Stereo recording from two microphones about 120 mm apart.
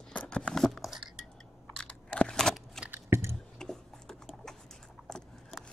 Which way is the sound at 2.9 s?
20° right (ahead or behind).